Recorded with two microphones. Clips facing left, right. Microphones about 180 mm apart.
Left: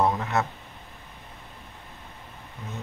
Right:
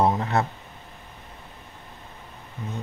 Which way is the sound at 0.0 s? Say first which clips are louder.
Right 2 dB; 30° right (ahead or behind).